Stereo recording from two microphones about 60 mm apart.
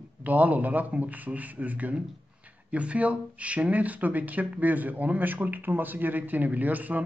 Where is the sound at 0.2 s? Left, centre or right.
Right.